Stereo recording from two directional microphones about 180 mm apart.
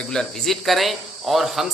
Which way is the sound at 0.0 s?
5° left (ahead or behind).